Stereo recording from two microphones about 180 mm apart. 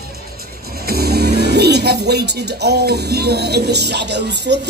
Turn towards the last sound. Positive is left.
turn(degrees=-70)  # may be behind; listen again after turning